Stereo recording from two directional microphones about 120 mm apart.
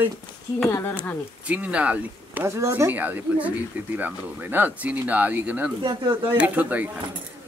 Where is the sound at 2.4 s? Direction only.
25° right (ahead or behind).